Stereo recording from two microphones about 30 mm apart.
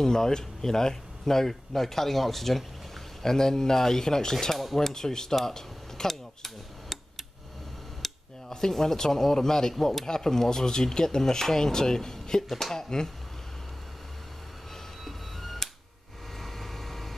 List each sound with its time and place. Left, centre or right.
0.0 s speech: centre
3.2 s speech: centre
4.7 s a sound: centre
8.0 s speech: centre
15.0 s music: centre
16.3 s vehicle: centre